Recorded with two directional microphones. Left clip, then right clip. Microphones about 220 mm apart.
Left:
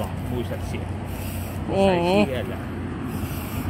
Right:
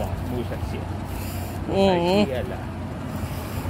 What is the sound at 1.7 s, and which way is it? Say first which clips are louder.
Speech: even; 10° right (ahead or behind).